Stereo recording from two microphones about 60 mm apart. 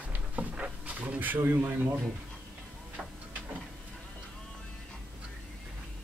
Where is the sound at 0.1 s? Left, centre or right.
Right.